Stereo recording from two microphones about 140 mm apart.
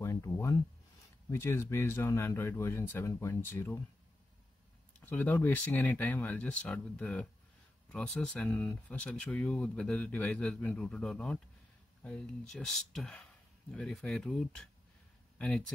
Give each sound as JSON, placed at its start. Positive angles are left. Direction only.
{"t": 0.0, "sound": "a sound", "side_deg": 20}
{"t": 1.3, "sound": "speech", "side_deg": 15}
{"t": 5.0, "sound": "speech", "side_deg": 15}